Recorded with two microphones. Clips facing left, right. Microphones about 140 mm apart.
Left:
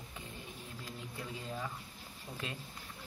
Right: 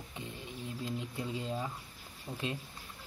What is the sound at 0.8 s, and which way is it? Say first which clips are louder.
Speech: right 7 dB; 25° right (ahead or behind).